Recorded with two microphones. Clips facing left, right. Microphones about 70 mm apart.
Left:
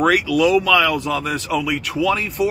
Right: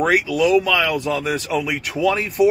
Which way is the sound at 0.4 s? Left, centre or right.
Centre.